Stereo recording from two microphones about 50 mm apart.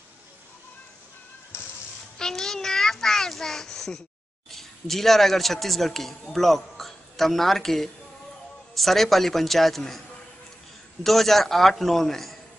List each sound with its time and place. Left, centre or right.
1.5 s music: left
2.1 s a child's voice: centre
11.1 s a man's voice: centre